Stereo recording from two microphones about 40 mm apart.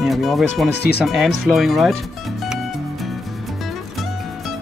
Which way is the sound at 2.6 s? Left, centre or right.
Centre.